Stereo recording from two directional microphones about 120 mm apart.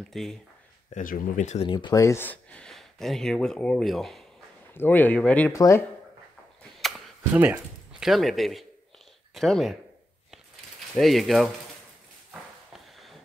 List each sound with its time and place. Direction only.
0.1 s speech: centre (ahead or behind)
0.9 s speech: 90° left
1.7 s speech: 45° left (ahead or behind)
2.0 s speech: 20° left (ahead or behind); by 4.2 s centre (ahead or behind)
4.7 s a man's voice: 15° left (ahead or behind)
5.5 s speech: 25° left (ahead or behind)
6.8 s a sound: centre (ahead or behind)
7.3 s speech: 15° right (ahead or behind)
8.0 s speech: centre (ahead or behind)
11.0 s speech: centre (ahead or behind)
12.3 s a sound: centre (ahead or behind)